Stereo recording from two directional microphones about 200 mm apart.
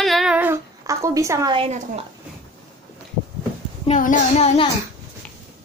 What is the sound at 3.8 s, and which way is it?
Speech, 35° left (ahead or behind).